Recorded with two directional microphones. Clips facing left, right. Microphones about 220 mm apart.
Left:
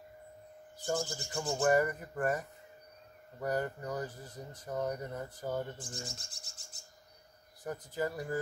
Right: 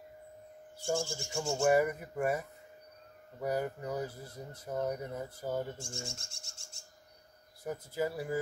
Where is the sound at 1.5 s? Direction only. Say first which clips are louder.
Right 1 dB; 10° right (ahead or behind).